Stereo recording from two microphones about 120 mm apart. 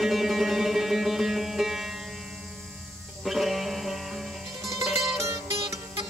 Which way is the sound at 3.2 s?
Centre (ahead or behind).